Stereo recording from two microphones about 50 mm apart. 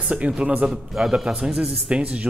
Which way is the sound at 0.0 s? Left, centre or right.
Right.